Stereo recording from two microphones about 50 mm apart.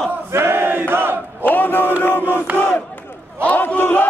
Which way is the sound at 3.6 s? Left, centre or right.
Left.